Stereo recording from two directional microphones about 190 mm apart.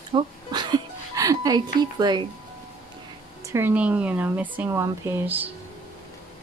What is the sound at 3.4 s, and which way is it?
Speech, 10° right (ahead or behind).